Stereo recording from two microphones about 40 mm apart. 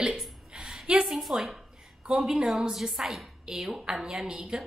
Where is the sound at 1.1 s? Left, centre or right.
Centre.